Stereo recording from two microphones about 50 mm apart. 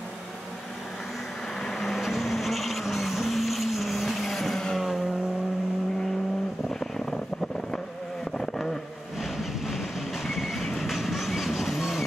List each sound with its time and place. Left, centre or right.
1.6 s vehicle: centre
8.4 s vehicle: centre
9.2 s train: centre